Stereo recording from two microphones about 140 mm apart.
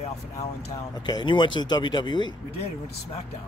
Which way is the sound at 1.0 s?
30° left (ahead or behind).